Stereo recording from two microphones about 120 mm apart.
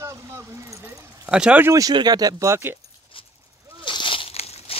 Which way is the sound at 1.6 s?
25° right (ahead or behind).